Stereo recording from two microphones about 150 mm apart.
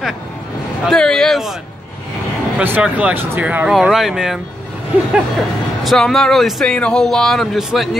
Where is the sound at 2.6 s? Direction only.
10° right (ahead or behind).